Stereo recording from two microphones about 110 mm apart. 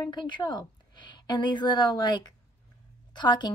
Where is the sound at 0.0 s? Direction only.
40° left (ahead or behind).